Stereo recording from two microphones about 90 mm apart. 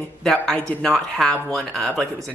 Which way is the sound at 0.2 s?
5° left (ahead or behind).